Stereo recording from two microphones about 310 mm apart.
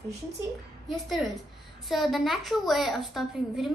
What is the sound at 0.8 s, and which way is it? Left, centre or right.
A woman's voice, centre.